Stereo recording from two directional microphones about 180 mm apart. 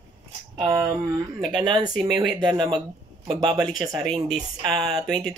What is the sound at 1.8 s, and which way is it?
Speech, 5° right (ahead or behind).